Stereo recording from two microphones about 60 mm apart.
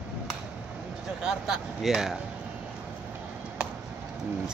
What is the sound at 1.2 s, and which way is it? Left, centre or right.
Speech, centre.